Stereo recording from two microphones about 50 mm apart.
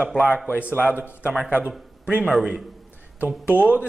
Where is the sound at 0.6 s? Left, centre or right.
Left.